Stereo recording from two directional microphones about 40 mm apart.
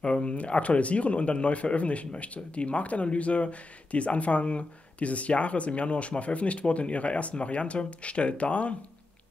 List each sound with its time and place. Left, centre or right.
0.0 s speech: left